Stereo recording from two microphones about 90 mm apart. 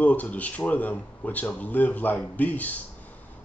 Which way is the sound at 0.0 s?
15° left (ahead or behind).